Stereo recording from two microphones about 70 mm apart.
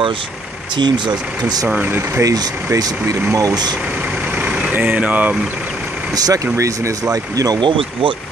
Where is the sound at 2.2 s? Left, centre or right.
Right.